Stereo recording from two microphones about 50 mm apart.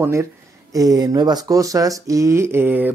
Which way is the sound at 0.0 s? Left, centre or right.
Right.